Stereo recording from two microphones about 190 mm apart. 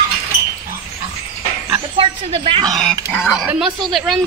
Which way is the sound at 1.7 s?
30° right (ahead or behind).